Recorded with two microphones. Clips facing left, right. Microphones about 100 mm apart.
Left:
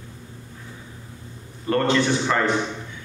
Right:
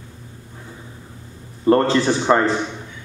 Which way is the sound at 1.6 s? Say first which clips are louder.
Right 5 dB; 30° right (ahead or behind).